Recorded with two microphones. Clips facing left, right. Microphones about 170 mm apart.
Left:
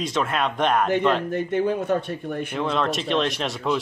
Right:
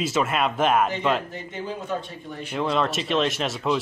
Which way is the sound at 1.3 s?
60° left (ahead or behind).